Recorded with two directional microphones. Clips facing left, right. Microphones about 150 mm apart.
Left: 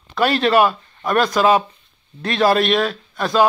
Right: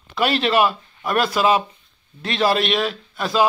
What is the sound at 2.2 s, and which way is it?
Speech, 45° left (ahead or behind).